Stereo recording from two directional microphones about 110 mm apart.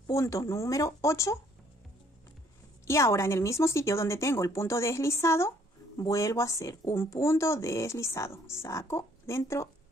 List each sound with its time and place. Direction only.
0.0 s a sound: 25° left (ahead or behind)
0.5 s speech: 25° left (ahead or behind)
2.9 s speech: 25° left (ahead or behind)